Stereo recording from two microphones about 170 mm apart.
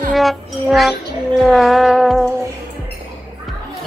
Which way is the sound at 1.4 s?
Centre (ahead or behind).